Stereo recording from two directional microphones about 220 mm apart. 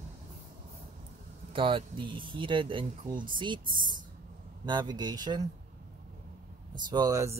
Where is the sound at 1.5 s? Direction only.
25° right (ahead or behind).